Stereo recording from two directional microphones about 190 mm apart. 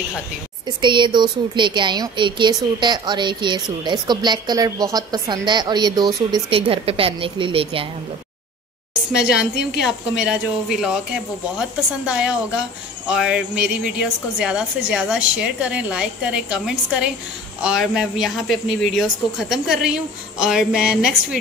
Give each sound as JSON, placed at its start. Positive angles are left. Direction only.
{"t": 0.7, "sound": "a woman's voice", "side_deg": -25}
{"t": 9.8, "sound": "jingle bell", "side_deg": -5}
{"t": 12.1, "sound": "jingle bell", "side_deg": -5}